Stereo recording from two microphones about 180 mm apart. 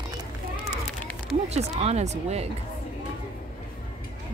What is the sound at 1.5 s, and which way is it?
Speech, 35° right (ahead or behind).